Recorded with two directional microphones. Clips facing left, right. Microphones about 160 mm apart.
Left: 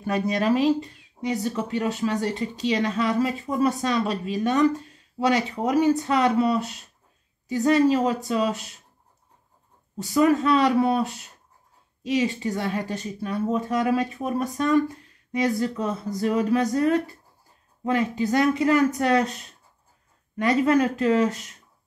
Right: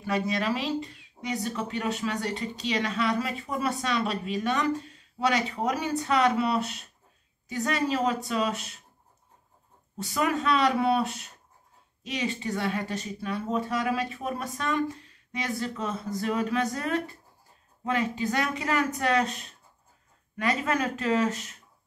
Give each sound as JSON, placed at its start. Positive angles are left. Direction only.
{"t": 0.0, "sound": "speech", "side_deg": 45}
{"t": 5.7, "sound": "speech", "side_deg": 40}
{"t": 10.1, "sound": "speech", "side_deg": 35}
{"t": 12.3, "sound": "speech", "side_deg": 35}
{"t": 20.3, "sound": "speech", "side_deg": 35}